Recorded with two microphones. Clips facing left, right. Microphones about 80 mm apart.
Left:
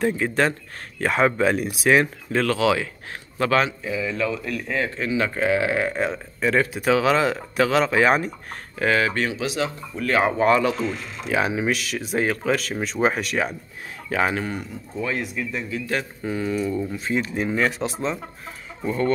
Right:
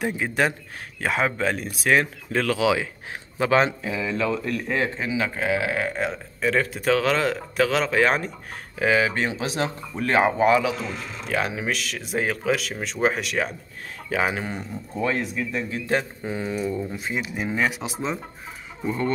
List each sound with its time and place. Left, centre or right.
0.0 s a man's voice: centre
2.5 s speech: centre
4.9 s a man's voice: centre
8.7 s speech: centre
9.3 s speech: right
10.1 s speech: centre
10.4 s a man's voice: centre
14.3 s speech: right
15.0 s speech: right
15.9 s speech: right